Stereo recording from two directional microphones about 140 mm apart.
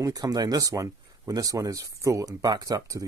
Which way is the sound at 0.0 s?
25° right (ahead or behind).